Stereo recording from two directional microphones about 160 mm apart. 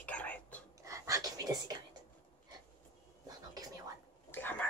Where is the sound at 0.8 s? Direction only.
20° right (ahead or behind).